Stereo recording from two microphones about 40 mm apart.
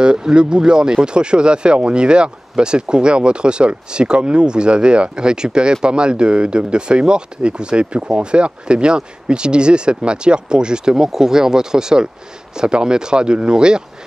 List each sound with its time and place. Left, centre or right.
0.0 s speech: right